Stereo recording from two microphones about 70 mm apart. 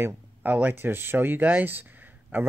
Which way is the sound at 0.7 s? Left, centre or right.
Right.